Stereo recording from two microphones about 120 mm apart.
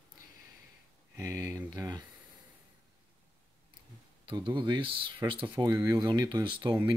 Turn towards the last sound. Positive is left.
turn(degrees=-40)  # may be behind; listen again after turning